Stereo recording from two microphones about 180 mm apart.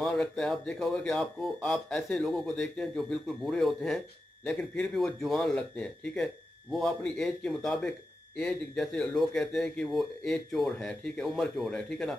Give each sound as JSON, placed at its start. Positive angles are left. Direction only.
{"t": 0.0, "sound": "speech", "side_deg": 0}